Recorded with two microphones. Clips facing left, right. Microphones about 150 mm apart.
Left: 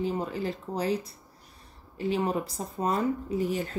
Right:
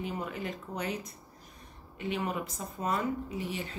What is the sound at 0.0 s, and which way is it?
Speech, 30° left (ahead or behind).